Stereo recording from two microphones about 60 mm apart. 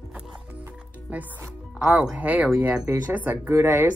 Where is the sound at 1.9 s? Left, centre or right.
Centre.